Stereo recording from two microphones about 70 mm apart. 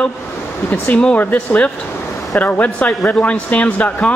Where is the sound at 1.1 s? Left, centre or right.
Left.